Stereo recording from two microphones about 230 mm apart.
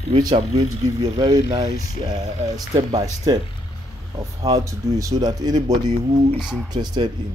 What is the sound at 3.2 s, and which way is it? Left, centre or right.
Speech, centre.